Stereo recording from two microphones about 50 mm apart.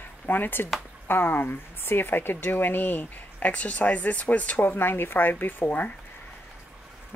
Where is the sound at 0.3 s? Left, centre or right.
Left.